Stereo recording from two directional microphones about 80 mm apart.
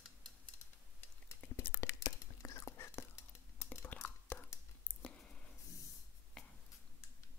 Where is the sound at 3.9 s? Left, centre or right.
Centre.